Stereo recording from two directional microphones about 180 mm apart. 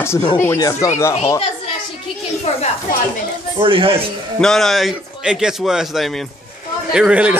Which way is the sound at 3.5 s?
30° right (ahead or behind).